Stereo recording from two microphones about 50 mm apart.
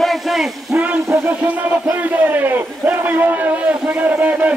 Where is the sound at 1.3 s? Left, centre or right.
Right.